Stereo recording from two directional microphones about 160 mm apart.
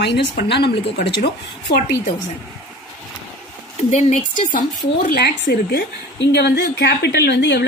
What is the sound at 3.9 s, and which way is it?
Speech, 50° left (ahead or behind).